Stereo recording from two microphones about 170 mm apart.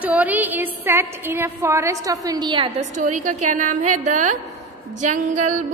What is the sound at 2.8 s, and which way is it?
A woman's voice, 50° right (ahead or behind).